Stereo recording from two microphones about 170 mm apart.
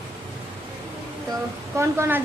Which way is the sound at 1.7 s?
15° right (ahead or behind).